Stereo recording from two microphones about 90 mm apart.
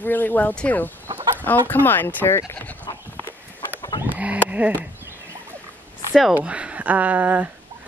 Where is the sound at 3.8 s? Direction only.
55° left (ahead or behind).